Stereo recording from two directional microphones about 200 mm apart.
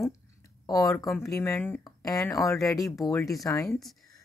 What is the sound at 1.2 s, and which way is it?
Speech, 15° left (ahead or behind).